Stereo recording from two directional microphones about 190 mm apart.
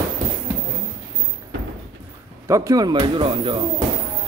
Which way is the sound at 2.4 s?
15° right (ahead or behind).